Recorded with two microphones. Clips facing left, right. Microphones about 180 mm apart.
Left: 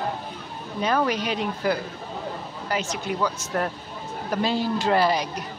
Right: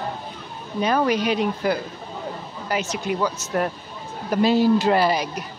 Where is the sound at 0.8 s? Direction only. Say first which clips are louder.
Right 3 dB; 15° right (ahead or behind).